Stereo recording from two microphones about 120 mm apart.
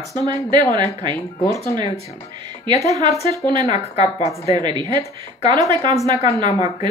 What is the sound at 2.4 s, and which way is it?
Speech, 35° right (ahead or behind).